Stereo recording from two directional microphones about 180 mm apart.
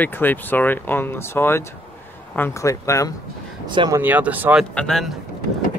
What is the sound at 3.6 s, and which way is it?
Speech, 25° right (ahead or behind).